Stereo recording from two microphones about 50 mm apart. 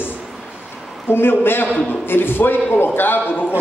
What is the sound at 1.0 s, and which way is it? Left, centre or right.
A man's voice, left.